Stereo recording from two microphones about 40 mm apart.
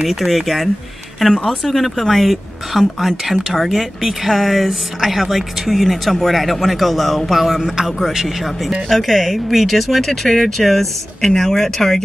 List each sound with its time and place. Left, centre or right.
0.0 s speech: centre
1.3 s speech: centre
1.6 s speech: centre
8.8 s speech: centre